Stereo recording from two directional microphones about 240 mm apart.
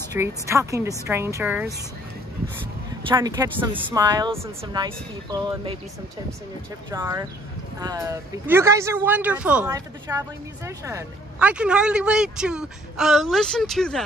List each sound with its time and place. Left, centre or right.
0.1 s a woman's voice: centre
3.1 s a woman's voice: centre
6.9 s a woman's voice: centre